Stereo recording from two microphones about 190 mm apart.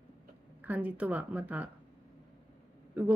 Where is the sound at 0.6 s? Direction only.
10° right (ahead or behind).